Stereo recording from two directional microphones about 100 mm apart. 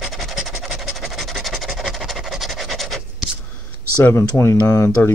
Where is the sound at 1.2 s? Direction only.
Centre (ahead or behind).